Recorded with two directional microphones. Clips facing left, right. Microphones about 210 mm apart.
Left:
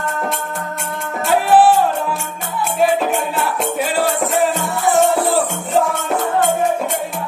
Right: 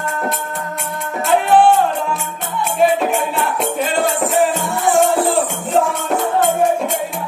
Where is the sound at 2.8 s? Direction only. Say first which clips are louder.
Right 1 dB; centre (ahead or behind).